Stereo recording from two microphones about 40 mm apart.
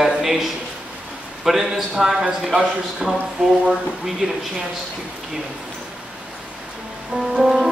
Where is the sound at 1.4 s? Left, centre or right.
Centre.